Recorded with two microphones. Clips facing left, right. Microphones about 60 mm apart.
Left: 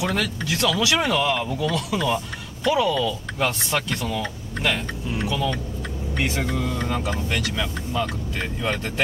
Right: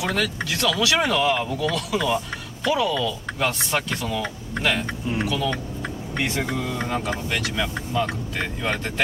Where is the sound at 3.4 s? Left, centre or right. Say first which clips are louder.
Even; centre.